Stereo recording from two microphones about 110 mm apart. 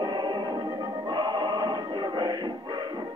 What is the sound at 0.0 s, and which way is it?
Music, 40° right (ahead or behind).